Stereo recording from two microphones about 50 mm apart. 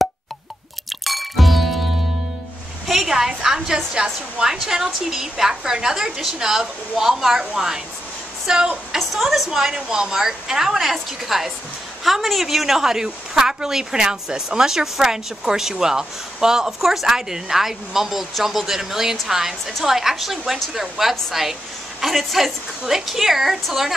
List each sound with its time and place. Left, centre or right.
1.0 s music: centre
2.9 s a woman's voice: centre
8.9 s a woman's voice: centre